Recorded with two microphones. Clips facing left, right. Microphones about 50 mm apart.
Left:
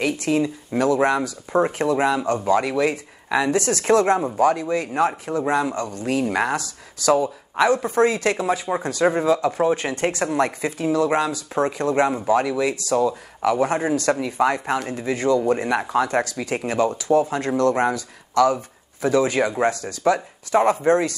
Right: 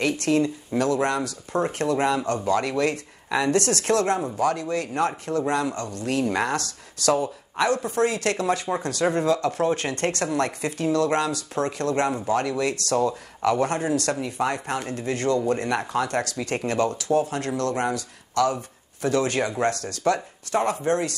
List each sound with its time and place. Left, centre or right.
0.0 s speech: centre
7.5 s speech: left
8.4 s speech: centre
13.8 s speech: left
17.1 s speech: left